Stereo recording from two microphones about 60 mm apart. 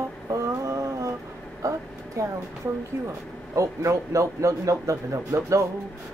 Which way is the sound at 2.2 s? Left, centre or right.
Right.